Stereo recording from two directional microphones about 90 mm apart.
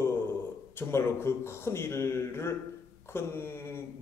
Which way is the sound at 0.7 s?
30° left (ahead or behind).